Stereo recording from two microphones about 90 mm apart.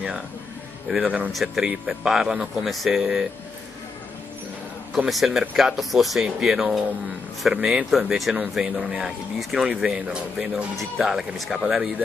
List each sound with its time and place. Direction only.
1.0 s speech: 15° right (ahead or behind)
1.3 s speech: 5° right (ahead or behind)
4.9 s speech: 5° right (ahead or behind)